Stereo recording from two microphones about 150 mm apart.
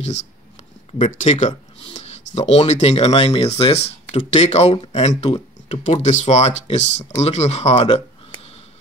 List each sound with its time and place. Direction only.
0.9 s speech: 50° left (ahead or behind)
7.7 s speech: 35° left (ahead or behind)